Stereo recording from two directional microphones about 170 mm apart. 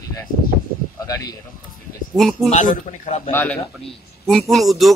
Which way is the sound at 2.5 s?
45° left (ahead or behind).